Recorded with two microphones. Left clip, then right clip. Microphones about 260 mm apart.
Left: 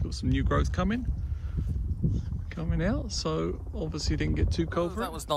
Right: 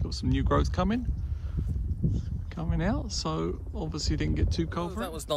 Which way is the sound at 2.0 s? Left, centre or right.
Centre.